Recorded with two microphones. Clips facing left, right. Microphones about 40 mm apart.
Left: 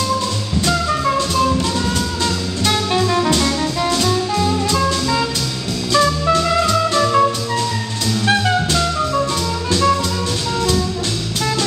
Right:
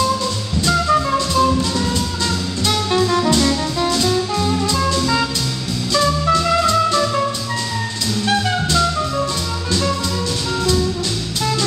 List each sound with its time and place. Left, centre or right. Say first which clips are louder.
0.7 s music: right 2 dB; centre
2.9 s music: right 2 dB; centre
5.9 s music: left 1 dB; centre